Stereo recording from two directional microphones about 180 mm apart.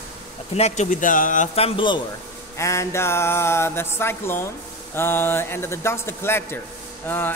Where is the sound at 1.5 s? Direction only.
30° left (ahead or behind).